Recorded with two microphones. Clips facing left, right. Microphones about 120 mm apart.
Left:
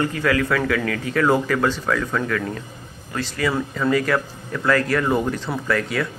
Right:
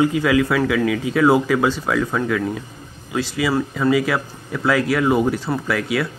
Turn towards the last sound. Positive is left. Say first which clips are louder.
# right 1 dB
turn(degrees=-5)  # may be behind; listen again after turning